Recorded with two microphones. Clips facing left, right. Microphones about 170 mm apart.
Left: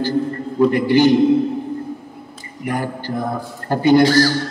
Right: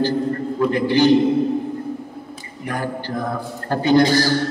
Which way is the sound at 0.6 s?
15° left (ahead or behind).